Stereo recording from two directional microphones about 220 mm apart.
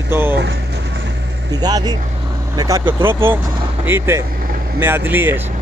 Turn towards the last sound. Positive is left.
turn(degrees=-10)  # may be behind; listen again after turning